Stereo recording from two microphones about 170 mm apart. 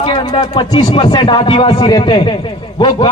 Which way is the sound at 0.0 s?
30° left (ahead or behind).